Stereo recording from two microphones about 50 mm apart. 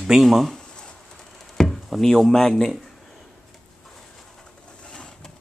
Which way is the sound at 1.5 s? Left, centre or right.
Centre.